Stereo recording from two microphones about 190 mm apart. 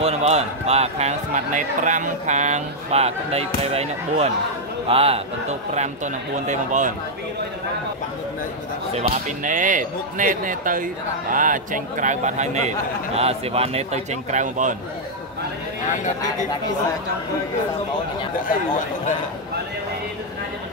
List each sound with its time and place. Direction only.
0.0 s speech: 35° right (ahead or behind)
8.9 s speech: 40° right (ahead or behind)